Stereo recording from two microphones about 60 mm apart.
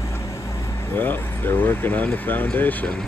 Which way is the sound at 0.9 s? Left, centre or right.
Left.